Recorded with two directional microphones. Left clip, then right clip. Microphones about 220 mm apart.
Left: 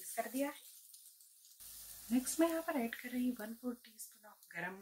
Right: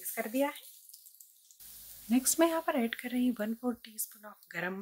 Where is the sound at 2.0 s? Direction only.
50° right (ahead or behind).